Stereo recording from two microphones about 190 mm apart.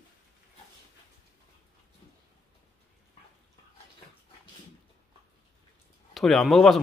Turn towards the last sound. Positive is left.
turn(degrees=0)  # may be behind; listen again after turning